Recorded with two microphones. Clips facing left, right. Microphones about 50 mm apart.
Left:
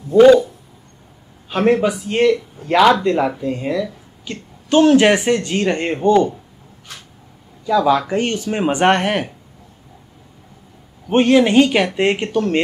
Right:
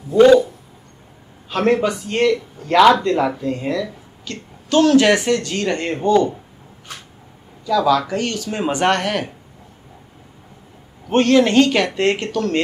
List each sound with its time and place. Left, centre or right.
0.1 s a sound: centre
1.5 s speech: centre
4.2 s speech: left
7.6 s speech: left
11.1 s speech: centre